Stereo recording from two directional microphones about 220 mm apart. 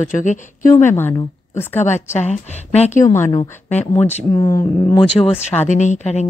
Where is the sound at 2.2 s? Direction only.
30° left (ahead or behind).